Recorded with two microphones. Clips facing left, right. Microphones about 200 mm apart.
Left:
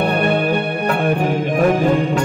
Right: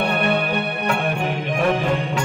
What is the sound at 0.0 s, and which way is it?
Music, 40° left (ahead or behind).